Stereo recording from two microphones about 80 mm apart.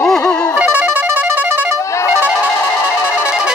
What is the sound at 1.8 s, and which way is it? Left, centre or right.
Music, left.